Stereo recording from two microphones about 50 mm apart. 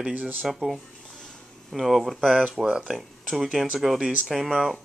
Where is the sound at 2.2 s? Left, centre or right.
Right.